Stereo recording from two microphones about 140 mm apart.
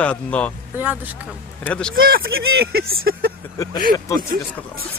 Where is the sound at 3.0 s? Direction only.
90° right.